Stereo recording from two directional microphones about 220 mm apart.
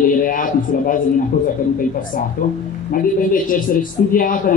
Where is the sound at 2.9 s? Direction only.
40° left (ahead or behind).